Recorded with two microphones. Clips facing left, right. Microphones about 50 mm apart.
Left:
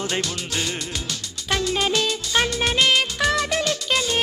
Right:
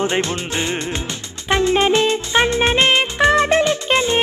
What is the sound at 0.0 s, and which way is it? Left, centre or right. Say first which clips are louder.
Music: right 7 dB; right.